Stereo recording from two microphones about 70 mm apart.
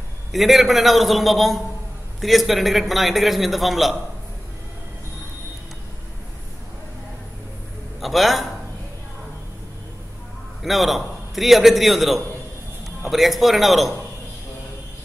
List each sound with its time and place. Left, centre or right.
0.3 s a man's voice: centre
8.0 s a man's voice: centre
10.6 s a man's voice: centre